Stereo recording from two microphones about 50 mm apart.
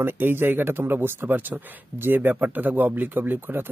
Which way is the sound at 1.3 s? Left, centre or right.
Right.